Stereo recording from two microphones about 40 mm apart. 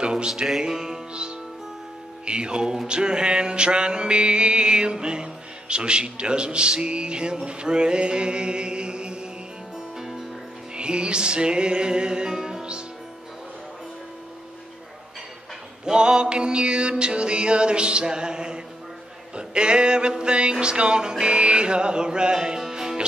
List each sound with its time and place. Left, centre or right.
0.0 s music: right
0.3 s music: centre
2.2 s mantra: right
10.7 s mantra: right
15.8 s mantra: right